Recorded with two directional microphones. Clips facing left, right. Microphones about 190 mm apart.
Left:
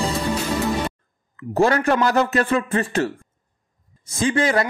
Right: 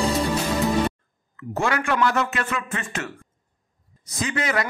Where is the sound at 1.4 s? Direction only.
35° left (ahead or behind).